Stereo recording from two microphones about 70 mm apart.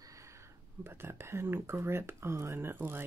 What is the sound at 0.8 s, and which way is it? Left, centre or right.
Speech, right.